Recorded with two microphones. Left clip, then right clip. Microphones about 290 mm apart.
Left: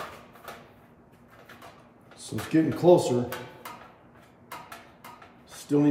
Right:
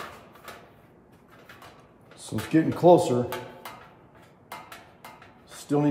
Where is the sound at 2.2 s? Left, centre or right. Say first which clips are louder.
Right 1 dB; right.